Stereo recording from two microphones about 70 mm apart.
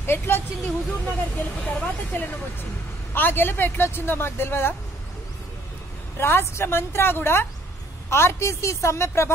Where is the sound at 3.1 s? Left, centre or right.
Left.